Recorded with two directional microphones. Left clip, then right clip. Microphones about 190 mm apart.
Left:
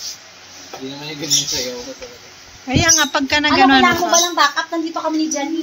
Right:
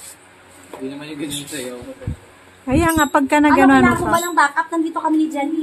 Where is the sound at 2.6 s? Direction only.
30° right (ahead or behind).